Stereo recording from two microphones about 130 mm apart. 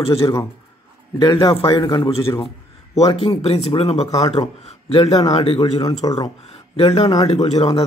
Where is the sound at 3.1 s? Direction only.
50° left (ahead or behind).